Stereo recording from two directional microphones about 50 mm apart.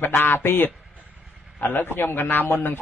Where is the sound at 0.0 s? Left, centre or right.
Left.